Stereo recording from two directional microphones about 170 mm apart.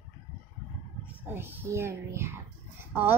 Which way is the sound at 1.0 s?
15° right (ahead or behind).